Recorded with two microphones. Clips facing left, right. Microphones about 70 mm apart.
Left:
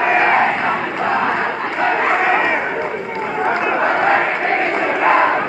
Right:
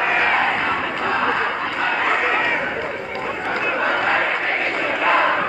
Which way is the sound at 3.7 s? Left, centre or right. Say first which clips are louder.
Left 4 dB; left.